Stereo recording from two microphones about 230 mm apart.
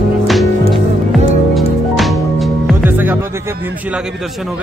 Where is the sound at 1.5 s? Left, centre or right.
Centre.